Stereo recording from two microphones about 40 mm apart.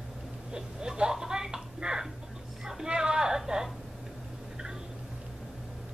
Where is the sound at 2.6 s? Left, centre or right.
Centre.